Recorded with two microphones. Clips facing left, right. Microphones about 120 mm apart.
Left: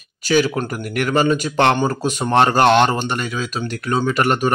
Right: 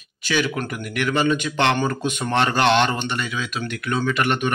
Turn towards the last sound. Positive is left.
turn(degrees=40)  # may be behind; listen again after turning